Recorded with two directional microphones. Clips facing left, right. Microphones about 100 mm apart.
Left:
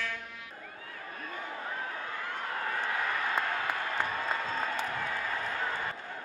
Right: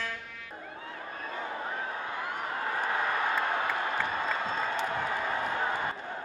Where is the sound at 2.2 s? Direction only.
15° right (ahead or behind).